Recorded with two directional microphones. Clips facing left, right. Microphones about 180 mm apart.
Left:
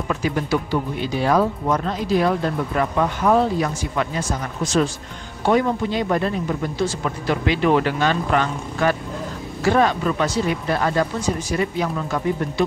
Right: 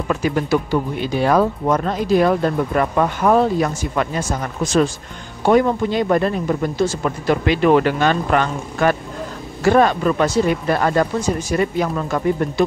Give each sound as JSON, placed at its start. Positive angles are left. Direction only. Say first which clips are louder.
{"t": 0.1, "sound": "speech", "louder": "right 4 dB", "side_deg": -50}
{"t": 5.5, "sound": "speech", "louder": "right 4 dB", "side_deg": -50}